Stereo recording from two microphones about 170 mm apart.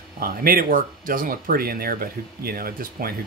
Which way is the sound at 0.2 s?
60° right (ahead or behind).